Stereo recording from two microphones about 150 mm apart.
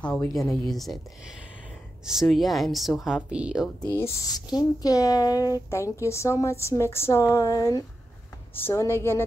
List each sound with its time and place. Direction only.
0.0 s speech: 5° left (ahead or behind)
2.0 s speech: centre (ahead or behind)
3.9 s a woman's voice: 20° left (ahead or behind)